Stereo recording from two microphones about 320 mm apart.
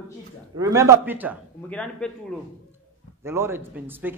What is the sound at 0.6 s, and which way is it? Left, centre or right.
Speech, centre.